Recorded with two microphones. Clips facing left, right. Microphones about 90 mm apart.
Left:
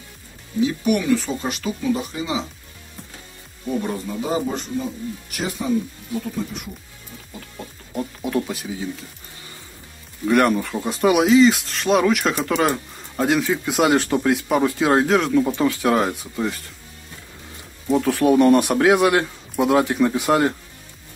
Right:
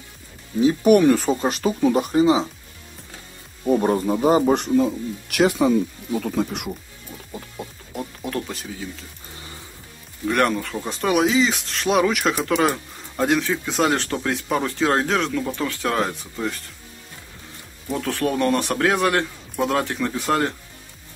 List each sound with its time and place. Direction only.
0.6 s speech: 40° right (ahead or behind)
3.6 s speech: 45° right (ahead or behind)
5.3 s speech: 90° right
6.2 s speech: 75° right (ahead or behind)
7.9 s speech: centre (ahead or behind)
10.2 s speech: 5° left (ahead or behind)
15.3 s speech: 15° left (ahead or behind)
17.9 s speech: 15° left (ahead or behind)